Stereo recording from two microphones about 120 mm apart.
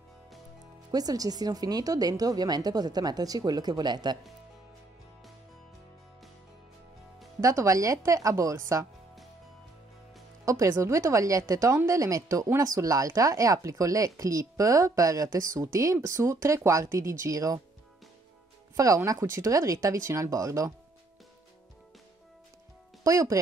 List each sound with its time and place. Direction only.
0.9 s a woman's voice: 30° right (ahead or behind)
7.3 s speech: 25° right (ahead or behind)
10.4 s speech: 25° right (ahead or behind)
18.8 s speech: 30° right (ahead or behind)
23.0 s speech: 30° right (ahead or behind)